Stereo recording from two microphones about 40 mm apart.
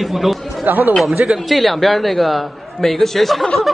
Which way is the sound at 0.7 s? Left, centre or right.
Right.